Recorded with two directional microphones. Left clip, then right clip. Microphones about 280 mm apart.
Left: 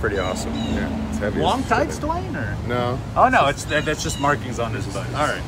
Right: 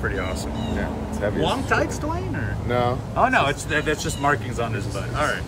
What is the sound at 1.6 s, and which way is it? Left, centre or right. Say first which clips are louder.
Speech: left 2 dB; centre.